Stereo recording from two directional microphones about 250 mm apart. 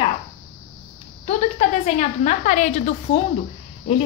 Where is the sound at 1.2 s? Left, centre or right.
Left.